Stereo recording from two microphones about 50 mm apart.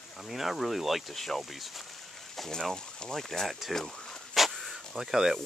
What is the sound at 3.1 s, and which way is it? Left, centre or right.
Speech, centre.